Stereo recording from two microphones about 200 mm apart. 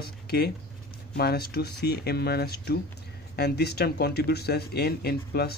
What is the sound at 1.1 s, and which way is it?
Speech, 50° left (ahead or behind).